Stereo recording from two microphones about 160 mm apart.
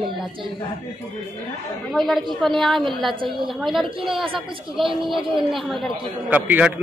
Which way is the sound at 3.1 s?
30° right (ahead or behind).